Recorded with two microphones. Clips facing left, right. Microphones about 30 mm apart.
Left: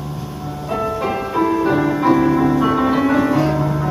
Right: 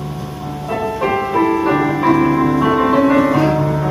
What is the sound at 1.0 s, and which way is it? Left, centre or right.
Music, centre.